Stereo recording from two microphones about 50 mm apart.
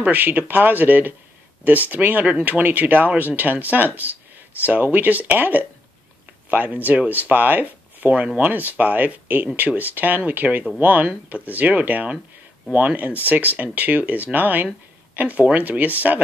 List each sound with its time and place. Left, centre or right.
0.0 s speech: right